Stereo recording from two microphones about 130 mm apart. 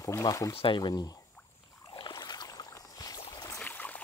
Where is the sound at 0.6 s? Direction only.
40° left (ahead or behind).